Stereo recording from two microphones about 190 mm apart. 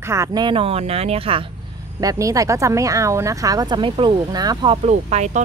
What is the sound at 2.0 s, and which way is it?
Speech, 20° right (ahead or behind).